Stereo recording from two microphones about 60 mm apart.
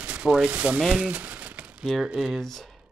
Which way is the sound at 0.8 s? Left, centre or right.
Centre.